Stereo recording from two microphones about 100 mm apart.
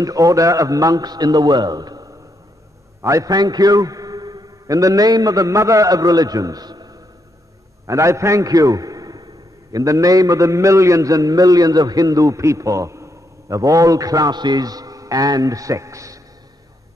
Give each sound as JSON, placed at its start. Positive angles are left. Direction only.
{"t": 0.0, "sound": "a man's voice", "side_deg": -35}
{"t": 7.8, "sound": "a man's voice", "side_deg": -30}